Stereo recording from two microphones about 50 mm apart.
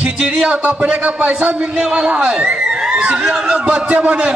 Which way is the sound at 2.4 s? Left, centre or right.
Right.